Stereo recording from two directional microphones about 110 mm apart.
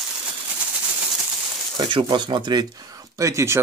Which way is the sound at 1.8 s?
45° right (ahead or behind).